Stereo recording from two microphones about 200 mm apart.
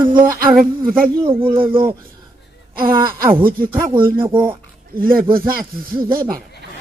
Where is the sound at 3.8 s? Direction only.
20° right (ahead or behind).